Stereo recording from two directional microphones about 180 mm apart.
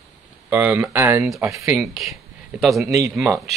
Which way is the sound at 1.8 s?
Centre (ahead or behind).